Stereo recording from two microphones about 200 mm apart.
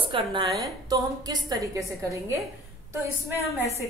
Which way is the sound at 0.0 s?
25° right (ahead or behind).